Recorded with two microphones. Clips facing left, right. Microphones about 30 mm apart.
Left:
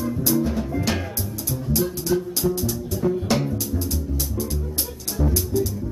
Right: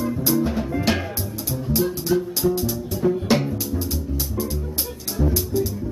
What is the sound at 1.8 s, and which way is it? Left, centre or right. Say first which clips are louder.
Music: right 2 dB; centre.